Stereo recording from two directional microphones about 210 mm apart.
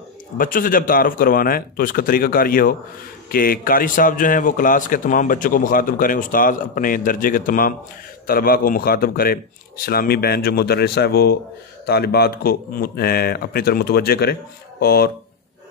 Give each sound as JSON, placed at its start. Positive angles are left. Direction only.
{"t": 0.4, "sound": "a man's voice", "side_deg": 40}